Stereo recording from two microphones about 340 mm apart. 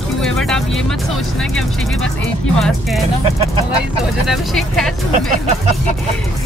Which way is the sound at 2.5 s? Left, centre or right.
Centre.